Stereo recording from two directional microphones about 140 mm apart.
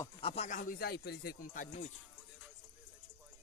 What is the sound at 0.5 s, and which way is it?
Speech, 75° left (ahead or behind).